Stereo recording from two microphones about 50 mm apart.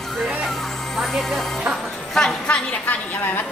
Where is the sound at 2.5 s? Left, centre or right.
Left.